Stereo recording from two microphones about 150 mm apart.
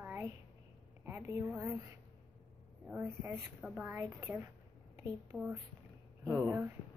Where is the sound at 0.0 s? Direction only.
15° right (ahead or behind).